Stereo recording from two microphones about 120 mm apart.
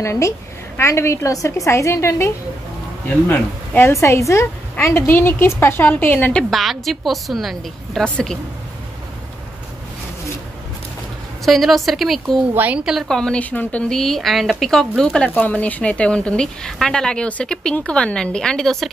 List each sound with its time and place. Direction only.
0.0 s a woman's voice: 25° left (ahead or behind)
6.5 s a woman's voice: centre (ahead or behind)
11.4 s a woman's voice: centre (ahead or behind)
12.5 s speech: 10° right (ahead or behind)
13.1 s speech: 5° left (ahead or behind)